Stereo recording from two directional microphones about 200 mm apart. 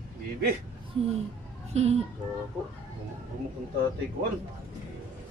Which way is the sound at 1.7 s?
30° right (ahead or behind).